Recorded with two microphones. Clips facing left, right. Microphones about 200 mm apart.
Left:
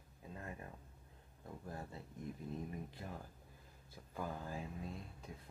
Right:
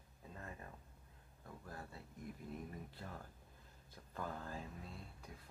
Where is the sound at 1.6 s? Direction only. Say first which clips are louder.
Left 4 dB; 20° left (ahead or behind).